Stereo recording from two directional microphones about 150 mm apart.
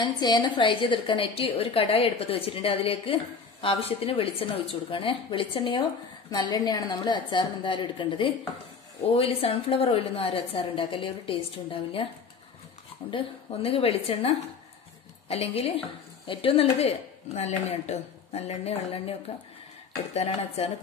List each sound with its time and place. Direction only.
0.0 s a woman's voice: 30° left (ahead or behind)
13.1 s a woman's voice: 40° left (ahead or behind)
20.2 s speech: 45° left (ahead or behind)